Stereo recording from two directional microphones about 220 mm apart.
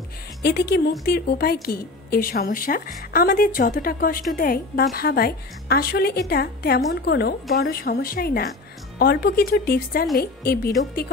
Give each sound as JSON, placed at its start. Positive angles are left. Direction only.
{"t": 0.4, "sound": "a woman's voice", "side_deg": 45}